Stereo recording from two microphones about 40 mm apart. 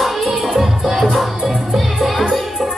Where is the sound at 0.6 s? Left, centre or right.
Centre.